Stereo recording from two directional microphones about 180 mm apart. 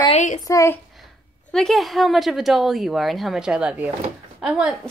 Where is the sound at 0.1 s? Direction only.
45° left (ahead or behind).